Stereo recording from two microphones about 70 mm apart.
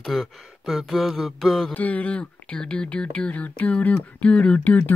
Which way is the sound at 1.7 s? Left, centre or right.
Left.